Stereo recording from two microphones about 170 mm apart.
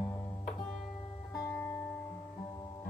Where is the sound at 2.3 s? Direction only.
25° left (ahead or behind).